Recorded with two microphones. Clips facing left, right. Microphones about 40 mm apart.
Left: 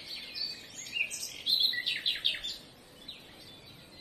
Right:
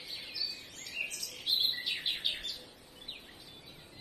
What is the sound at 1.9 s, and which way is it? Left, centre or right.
Bird, left.